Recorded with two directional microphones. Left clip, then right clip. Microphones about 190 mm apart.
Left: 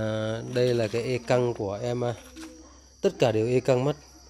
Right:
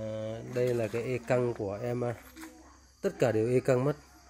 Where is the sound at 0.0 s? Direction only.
35° left (ahead or behind).